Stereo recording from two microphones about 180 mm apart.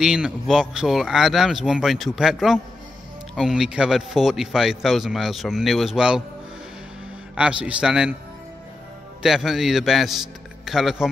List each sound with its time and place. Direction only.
0.0 s a man's voice: 5° right (ahead or behind)
7.3 s a man's voice: 5° right (ahead or behind)
9.2 s a man's voice: centre (ahead or behind)